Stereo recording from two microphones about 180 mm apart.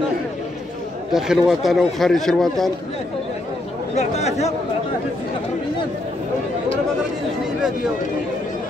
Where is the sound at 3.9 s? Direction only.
35° left (ahead or behind).